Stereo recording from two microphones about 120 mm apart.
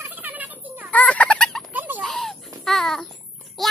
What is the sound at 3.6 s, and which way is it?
Child singing, centre (ahead or behind).